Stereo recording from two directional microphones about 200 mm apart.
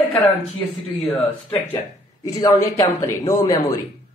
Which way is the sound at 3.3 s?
15° left (ahead or behind).